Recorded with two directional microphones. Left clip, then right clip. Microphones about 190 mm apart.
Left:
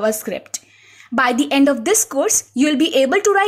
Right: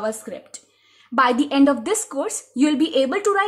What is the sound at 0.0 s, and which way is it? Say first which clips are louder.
Speech: left 7 dB; 20° left (ahead or behind).